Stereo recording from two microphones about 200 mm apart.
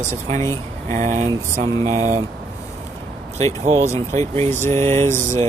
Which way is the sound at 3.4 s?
35° right (ahead or behind).